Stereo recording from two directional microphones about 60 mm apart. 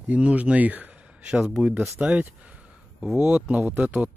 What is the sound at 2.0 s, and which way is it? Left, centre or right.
Speech, right.